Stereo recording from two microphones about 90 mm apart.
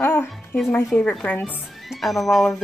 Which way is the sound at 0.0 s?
25° left (ahead or behind).